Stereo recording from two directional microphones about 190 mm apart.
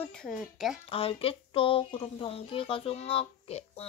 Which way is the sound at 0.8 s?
30° left (ahead or behind).